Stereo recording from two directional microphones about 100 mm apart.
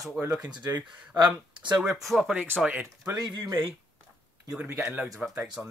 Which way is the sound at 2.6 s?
15° right (ahead or behind).